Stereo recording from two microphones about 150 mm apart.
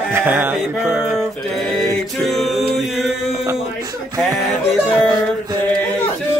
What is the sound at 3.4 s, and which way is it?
Music, 20° right (ahead or behind).